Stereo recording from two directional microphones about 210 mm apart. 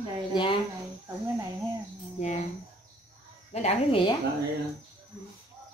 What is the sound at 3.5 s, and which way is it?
Speech, 30° left (ahead or behind).